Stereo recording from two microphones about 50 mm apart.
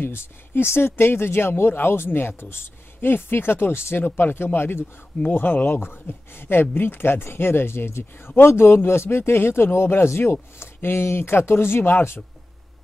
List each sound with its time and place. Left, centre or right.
0.0 s speech: left